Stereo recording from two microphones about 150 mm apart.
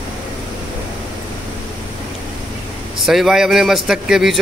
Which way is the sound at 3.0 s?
Centre (ahead or behind).